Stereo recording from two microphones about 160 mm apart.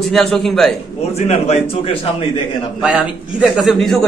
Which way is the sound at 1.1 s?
40° left (ahead or behind).